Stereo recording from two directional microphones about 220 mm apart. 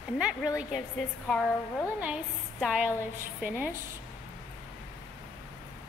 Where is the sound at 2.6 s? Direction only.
5° right (ahead or behind).